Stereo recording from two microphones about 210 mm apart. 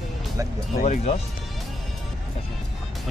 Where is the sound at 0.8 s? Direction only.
30° left (ahead or behind).